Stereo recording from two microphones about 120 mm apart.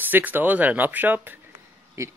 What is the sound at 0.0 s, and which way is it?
Speech, 15° right (ahead or behind).